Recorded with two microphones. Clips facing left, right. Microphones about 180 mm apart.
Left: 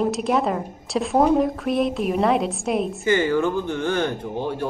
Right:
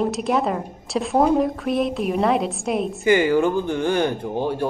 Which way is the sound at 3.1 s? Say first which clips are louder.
Right 3 dB; 15° right (ahead or behind).